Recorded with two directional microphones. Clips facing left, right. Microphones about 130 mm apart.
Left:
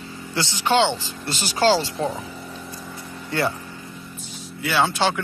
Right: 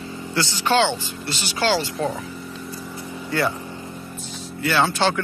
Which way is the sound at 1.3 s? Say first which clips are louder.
Left 3 dB; 40° left (ahead or behind).